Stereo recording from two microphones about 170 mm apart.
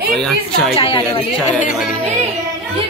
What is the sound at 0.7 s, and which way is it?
A woman's voice, 30° left (ahead or behind).